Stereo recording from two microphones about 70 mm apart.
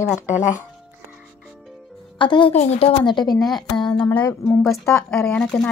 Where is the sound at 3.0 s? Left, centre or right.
Left.